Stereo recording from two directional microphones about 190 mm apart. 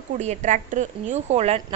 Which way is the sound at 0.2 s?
35° right (ahead or behind).